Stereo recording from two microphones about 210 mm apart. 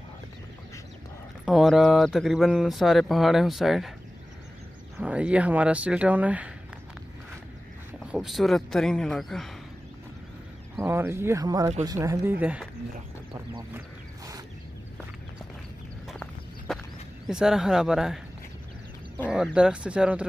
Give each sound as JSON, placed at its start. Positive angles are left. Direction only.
{"t": 1.4, "sound": "speech", "side_deg": 0}
{"t": 4.9, "sound": "speech", "side_deg": -5}
{"t": 8.1, "sound": "speech", "side_deg": 0}
{"t": 10.8, "sound": "speech", "side_deg": -10}
{"t": 13.5, "sound": "a sound", "side_deg": -15}
{"t": 16.1, "sound": "walk", "side_deg": 0}
{"t": 17.3, "sound": "speech", "side_deg": -5}
{"t": 19.3, "sound": "speech", "side_deg": -5}